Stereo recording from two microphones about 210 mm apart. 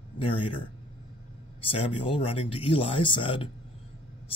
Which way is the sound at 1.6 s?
25° left (ahead or behind).